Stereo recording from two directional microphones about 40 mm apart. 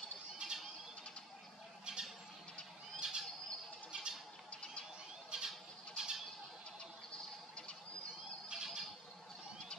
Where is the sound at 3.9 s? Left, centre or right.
Right.